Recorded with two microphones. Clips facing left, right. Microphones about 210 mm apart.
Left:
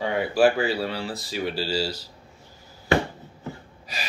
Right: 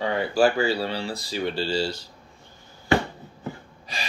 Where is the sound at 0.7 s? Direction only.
5° left (ahead or behind).